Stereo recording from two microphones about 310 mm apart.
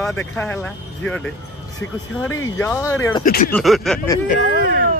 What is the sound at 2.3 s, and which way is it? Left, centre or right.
Speech, centre.